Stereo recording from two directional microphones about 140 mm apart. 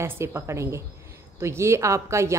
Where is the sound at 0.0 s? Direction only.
15° right (ahead or behind).